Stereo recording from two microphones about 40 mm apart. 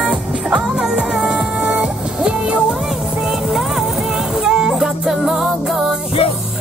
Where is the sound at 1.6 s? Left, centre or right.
Right.